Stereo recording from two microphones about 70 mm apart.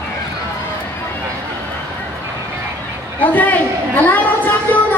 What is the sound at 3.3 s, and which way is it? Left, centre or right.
Chatter, left.